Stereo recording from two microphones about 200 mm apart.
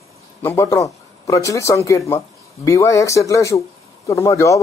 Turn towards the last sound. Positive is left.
turn(degrees=15)  # may be behind; listen again after turning